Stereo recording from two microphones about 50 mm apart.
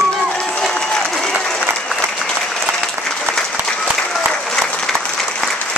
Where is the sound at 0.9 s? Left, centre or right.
Centre.